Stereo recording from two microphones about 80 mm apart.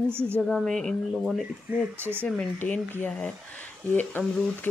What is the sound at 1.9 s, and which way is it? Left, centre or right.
Speech, right.